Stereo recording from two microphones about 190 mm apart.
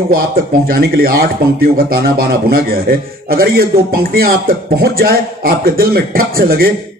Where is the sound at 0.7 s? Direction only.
50° right (ahead or behind).